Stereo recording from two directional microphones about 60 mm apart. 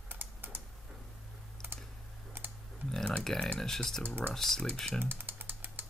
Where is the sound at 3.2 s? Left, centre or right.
Centre.